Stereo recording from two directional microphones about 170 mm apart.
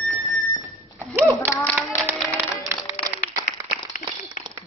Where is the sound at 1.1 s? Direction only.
10° right (ahead or behind).